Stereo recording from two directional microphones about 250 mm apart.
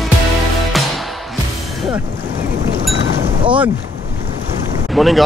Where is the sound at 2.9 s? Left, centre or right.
Centre.